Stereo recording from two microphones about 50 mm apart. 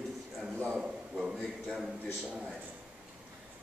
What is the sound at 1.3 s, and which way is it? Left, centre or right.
Speech, centre.